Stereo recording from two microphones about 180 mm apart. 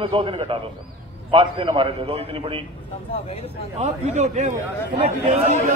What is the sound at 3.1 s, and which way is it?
Speech, 35° left (ahead or behind).